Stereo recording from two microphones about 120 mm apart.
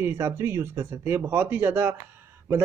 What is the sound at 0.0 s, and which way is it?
Speech, 20° right (ahead or behind).